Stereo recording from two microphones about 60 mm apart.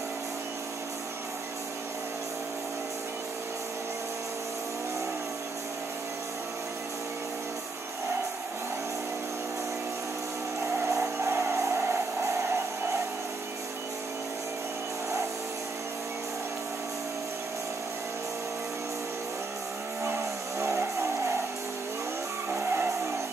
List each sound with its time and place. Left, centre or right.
10.6 s music: right
20.5 s vehicle: right
22.5 s music: right